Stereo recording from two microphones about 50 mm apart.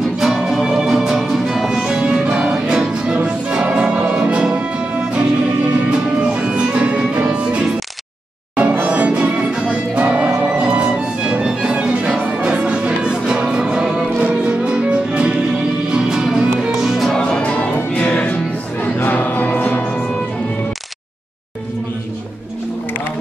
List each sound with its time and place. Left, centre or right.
0.2 s music: centre
16.8 s music: centre
17.4 s music: left